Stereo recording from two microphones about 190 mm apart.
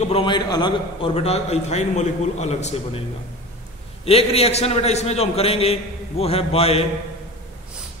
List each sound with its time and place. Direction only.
0.0 s a man's voice: 30° left (ahead or behind)
4.0 s a man's voice: 30° left (ahead or behind)